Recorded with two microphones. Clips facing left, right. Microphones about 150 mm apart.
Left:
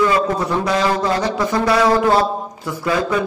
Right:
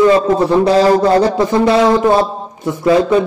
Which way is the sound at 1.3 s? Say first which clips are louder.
Right 5 dB; 25° right (ahead or behind).